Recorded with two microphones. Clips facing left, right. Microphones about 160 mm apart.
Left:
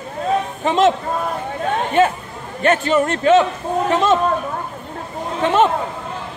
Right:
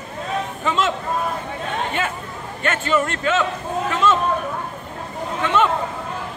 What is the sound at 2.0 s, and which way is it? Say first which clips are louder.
A man's voice: left 9 dB; 40° left (ahead or behind).